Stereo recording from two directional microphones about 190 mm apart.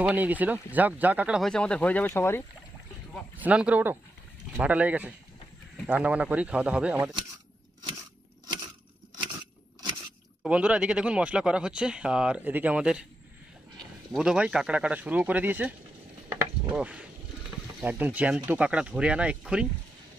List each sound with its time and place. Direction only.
0.0 s speech: 10° right (ahead or behind); by 2.4 s 10° left (ahead or behind)
3.3 s speech: 5° right (ahead or behind)
10.4 s speech: 5° right (ahead or behind)
14.1 s speech: 5° right (ahead or behind)
16.3 s a sound: 10° right (ahead or behind)
17.7 s speech: 10° right (ahead or behind)